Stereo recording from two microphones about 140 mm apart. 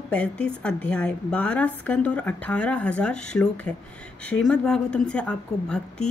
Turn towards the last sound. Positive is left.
turn(degrees=5)  # may be behind; listen again after turning